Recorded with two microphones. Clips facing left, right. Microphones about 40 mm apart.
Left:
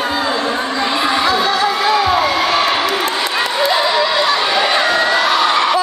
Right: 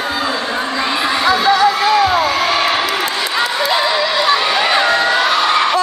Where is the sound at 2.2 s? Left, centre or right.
Centre.